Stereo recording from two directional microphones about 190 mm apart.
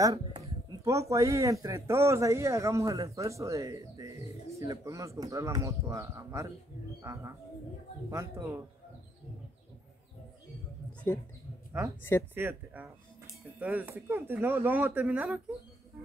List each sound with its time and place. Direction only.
0.4 s speech: 15° right (ahead or behind)
11.1 s speech: 10° left (ahead or behind)
12.4 s speech: 10° right (ahead or behind)